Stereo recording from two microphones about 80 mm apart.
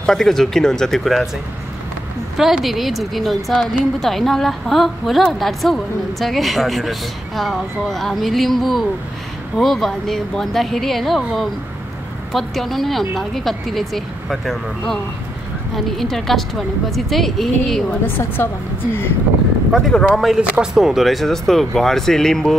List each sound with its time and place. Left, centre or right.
0.0 s speech: centre
2.3 s speech: centre
18.0 s a woman's voice: left
19.9 s speech: centre